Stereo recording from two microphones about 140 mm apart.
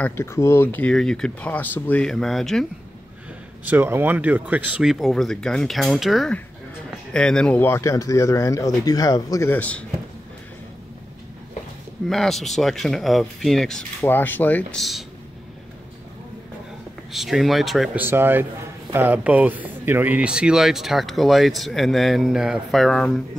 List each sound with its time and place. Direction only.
0.0 s speech: 20° left (ahead or behind); by 2.6 s centre (ahead or behind)
3.6 s a man's voice: 15° right (ahead or behind); by 9.5 s 25° left (ahead or behind)
9.5 s speech: 10° left (ahead or behind)
12.1 s a man's voice: centre (ahead or behind)
14.0 s speech: 15° left (ahead or behind)
14.8 s a man's voice: centre (ahead or behind)
17.1 s a man's voice: centre (ahead or behind)
17.9 s a man's voice: 15° right (ahead or behind); by 23.2 s 5° left (ahead or behind)